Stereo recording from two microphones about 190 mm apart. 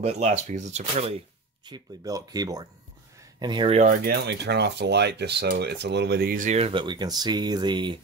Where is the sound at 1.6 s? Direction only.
20° right (ahead or behind).